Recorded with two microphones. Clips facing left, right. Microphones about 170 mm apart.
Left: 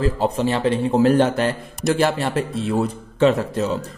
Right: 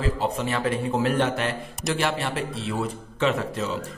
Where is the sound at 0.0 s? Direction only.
35° left (ahead or behind).